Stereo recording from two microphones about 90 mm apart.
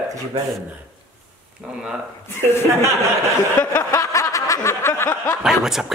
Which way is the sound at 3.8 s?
35° left (ahead or behind).